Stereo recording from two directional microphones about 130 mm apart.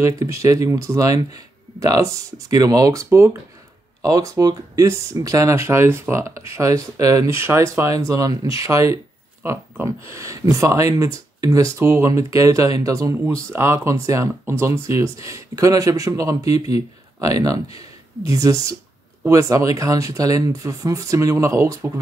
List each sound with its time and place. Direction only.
0.0 s speech: 25° right (ahead or behind)